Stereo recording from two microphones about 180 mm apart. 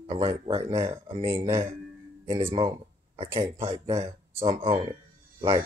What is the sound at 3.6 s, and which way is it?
Speech, 25° right (ahead or behind).